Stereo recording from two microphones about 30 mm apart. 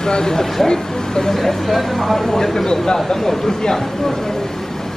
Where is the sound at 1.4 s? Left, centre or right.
Centre.